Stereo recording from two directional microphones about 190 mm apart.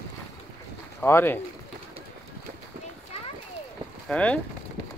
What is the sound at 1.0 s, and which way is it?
Speech, 10° left (ahead or behind).